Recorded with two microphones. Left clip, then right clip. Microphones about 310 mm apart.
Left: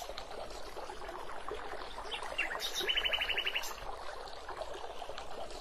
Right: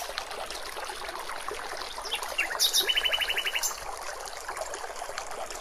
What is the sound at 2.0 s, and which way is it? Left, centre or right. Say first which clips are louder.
Bird: right 7 dB; right.